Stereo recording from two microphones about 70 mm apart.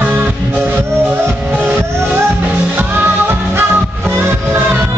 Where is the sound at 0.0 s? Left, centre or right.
Right.